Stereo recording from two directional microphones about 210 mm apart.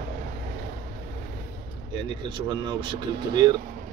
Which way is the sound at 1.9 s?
20° right (ahead or behind).